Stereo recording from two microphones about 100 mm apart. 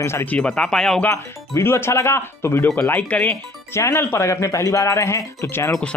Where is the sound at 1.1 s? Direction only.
25° left (ahead or behind).